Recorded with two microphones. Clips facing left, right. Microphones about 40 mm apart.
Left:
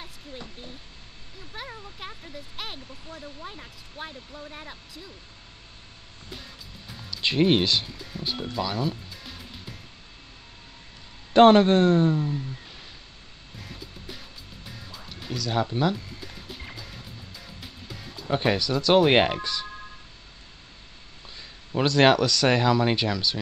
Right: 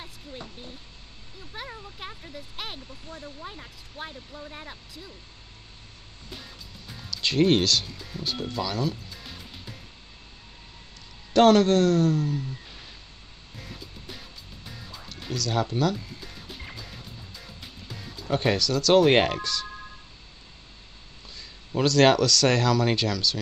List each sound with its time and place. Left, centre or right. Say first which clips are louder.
1.5 s speech: even; centre
6.3 s music: even; centre
7.1 s speech: even; centre
9.1 s music: left 1 dB; centre
11.3 s speech: left 2 dB; left
12.4 s a sound: right 1 dB; centre
13.6 s music: even; centre
15.3 s speech: even; centre
16.2 s music: left 1 dB; centre
18.3 s speech: even; centre
21.4 s speech: even; left